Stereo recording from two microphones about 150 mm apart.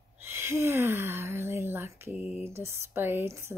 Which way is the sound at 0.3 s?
15° right (ahead or behind).